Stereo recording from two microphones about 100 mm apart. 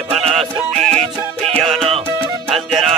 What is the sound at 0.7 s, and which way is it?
Music, 5° left (ahead or behind).